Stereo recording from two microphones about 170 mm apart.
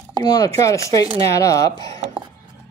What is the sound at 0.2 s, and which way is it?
Speech, 20° left (ahead or behind).